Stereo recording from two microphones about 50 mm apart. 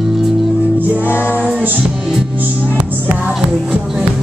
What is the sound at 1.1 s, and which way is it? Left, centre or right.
Music, left.